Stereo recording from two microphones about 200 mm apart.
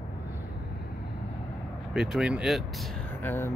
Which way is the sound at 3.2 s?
10° left (ahead or behind).